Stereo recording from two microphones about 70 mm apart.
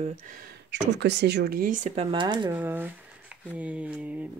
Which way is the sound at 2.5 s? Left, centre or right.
Right.